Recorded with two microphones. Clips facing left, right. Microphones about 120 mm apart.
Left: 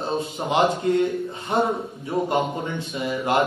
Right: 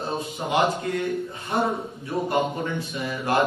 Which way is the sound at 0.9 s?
25° left (ahead or behind).